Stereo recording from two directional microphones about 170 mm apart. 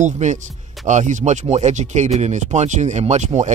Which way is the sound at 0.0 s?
45° right (ahead or behind).